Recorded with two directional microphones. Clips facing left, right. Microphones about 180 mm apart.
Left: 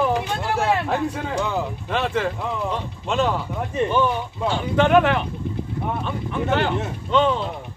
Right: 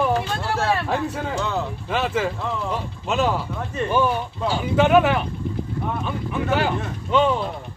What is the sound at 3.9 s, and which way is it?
Speech, 5° right (ahead or behind).